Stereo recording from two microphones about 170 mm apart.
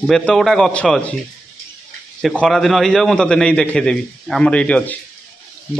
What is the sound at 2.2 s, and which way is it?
A man's voice, centre (ahead or behind).